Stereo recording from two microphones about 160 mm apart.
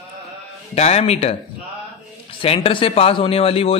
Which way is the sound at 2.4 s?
35° left (ahead or behind).